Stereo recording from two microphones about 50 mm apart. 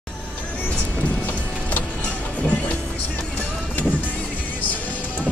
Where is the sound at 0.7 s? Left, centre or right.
Left.